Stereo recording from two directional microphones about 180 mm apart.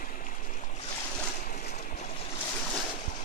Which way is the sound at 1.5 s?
50° left (ahead or behind).